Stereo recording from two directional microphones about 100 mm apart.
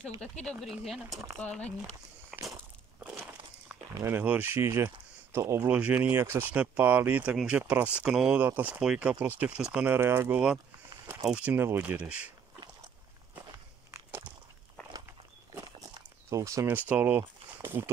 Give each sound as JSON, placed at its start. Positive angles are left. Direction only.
{"t": 0.5, "sound": "speech", "side_deg": 0}
{"t": 1.4, "sound": "speech", "side_deg": 10}
{"t": 2.3, "sound": "walk", "side_deg": -5}
{"t": 4.0, "sound": "speech", "side_deg": -20}
{"t": 5.7, "sound": "speech", "side_deg": -15}
{"t": 9.8, "sound": "speech", "side_deg": -25}
{"t": 16.3, "sound": "speech", "side_deg": -30}
{"t": 16.6, "sound": "speech", "side_deg": -15}